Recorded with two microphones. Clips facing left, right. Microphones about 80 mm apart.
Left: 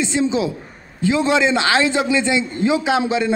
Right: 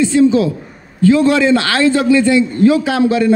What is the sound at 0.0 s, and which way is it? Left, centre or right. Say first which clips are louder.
A man's voice: right 8 dB; centre.